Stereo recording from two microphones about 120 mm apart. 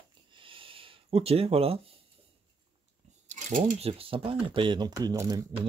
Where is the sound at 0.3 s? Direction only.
45° right (ahead or behind).